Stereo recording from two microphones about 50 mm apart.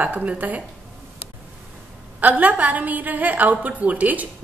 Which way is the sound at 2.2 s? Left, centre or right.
Right.